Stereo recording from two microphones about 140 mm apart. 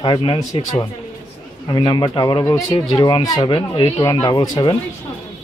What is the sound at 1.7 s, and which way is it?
Speech, 30° left (ahead or behind).